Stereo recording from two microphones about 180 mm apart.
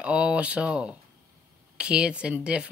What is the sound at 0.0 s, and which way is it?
Speech, 5° right (ahead or behind).